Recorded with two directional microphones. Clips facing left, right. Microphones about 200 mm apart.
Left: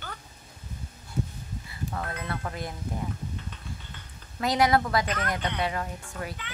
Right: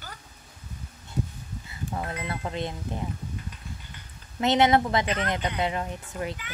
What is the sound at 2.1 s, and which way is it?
Music, 20° right (ahead or behind).